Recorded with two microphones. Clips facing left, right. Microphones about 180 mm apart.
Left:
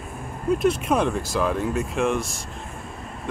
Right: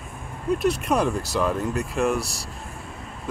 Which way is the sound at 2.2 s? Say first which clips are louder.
Even; 40° right (ahead or behind).